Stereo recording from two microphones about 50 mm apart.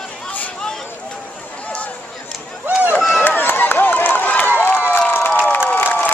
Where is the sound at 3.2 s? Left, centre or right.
Left.